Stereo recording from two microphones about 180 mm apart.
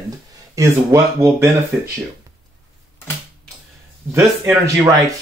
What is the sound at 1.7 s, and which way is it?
Speech, centre (ahead or behind).